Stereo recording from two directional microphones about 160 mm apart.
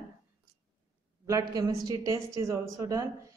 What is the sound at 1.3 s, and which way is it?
Speech, 25° right (ahead or behind).